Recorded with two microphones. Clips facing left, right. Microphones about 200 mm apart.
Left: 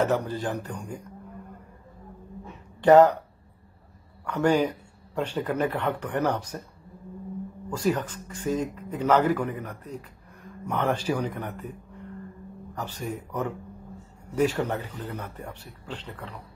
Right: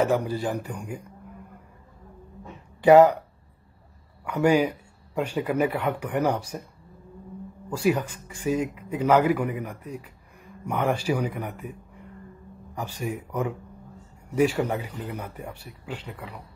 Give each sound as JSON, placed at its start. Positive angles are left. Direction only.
{"t": 0.0, "sound": "speech", "side_deg": -10}
{"t": 2.8, "sound": "speech", "side_deg": -10}
{"t": 4.2, "sound": "speech", "side_deg": -10}
{"t": 7.7, "sound": "speech", "side_deg": -10}
{"t": 12.7, "sound": "speech", "side_deg": -10}